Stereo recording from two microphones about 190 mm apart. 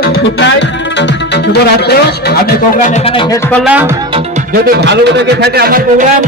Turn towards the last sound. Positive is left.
turn(degrees=-50)  # may be behind; listen again after turning